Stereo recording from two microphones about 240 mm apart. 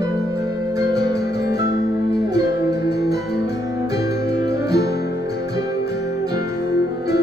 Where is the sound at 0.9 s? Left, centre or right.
Left.